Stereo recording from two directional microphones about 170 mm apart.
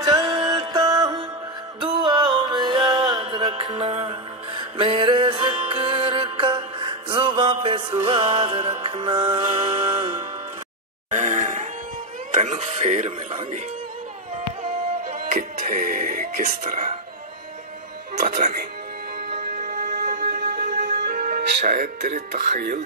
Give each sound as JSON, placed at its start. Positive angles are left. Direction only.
{"t": 0.0, "sound": "music", "side_deg": -25}
{"t": 11.1, "sound": "grunt", "side_deg": -45}
{"t": 12.4, "sound": "speech", "side_deg": -40}
{"t": 15.0, "sound": "music", "side_deg": -45}
{"t": 18.2, "sound": "speech", "side_deg": -60}
{"t": 19.2, "sound": "music", "side_deg": -65}